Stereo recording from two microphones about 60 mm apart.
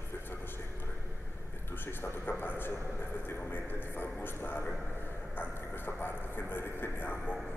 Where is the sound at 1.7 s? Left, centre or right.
Left.